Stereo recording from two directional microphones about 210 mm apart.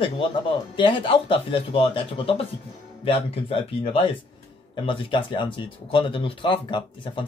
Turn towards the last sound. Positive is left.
turn(degrees=25)  # may be behind; listen again after turning